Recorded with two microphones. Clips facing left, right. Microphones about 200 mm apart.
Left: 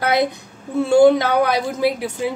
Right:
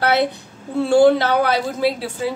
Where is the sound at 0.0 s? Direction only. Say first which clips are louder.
Even; 15° left (ahead or behind).